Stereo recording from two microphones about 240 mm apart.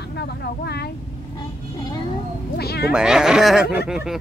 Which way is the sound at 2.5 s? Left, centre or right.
Left.